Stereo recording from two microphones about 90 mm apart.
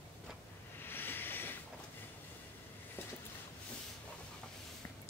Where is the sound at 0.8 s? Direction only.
25° left (ahead or behind).